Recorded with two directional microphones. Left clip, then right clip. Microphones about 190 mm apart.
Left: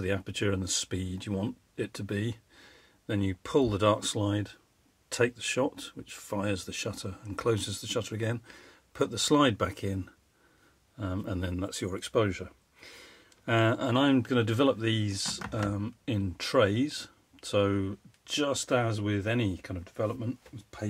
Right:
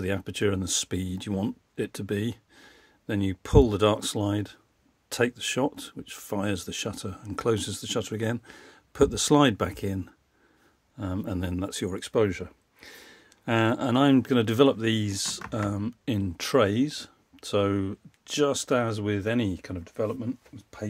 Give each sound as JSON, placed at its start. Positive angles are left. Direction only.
{"t": 0.0, "sound": "speech", "side_deg": -45}